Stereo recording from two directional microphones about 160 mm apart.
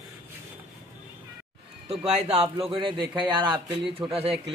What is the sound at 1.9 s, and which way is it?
A man's voice, 40° right (ahead or behind).